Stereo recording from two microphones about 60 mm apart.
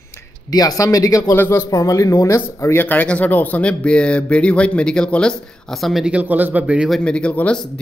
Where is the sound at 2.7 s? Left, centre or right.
Left.